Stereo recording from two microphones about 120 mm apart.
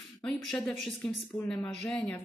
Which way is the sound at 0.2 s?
5° left (ahead or behind).